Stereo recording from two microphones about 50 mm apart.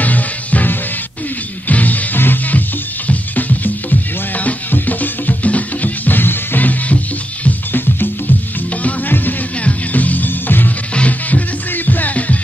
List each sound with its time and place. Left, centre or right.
0.0 s music: left
8.8 s music: left